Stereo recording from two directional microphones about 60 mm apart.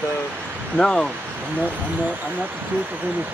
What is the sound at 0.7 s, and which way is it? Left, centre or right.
Speech, centre.